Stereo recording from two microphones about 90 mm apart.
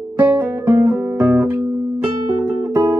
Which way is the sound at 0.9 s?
20° right (ahead or behind).